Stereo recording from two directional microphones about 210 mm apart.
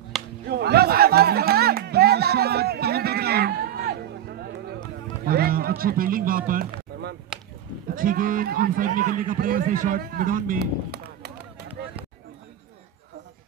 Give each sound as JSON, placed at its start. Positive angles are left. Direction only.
{"t": 0.1, "sound": "a sound", "side_deg": 0}
{"t": 0.5, "sound": "music", "side_deg": -50}
{"t": 5.2, "sound": "run", "side_deg": -45}
{"t": 7.9, "sound": "speech", "side_deg": -40}